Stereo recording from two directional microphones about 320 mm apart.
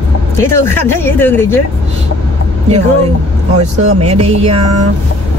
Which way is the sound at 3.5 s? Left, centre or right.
Centre.